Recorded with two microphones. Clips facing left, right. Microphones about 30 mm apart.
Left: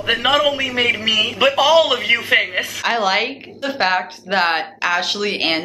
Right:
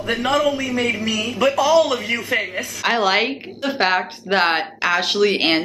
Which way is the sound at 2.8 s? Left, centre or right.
Centre.